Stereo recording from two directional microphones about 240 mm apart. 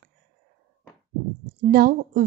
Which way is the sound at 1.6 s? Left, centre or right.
Right.